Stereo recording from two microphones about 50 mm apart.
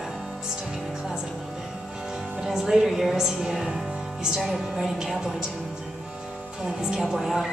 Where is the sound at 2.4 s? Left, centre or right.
Centre.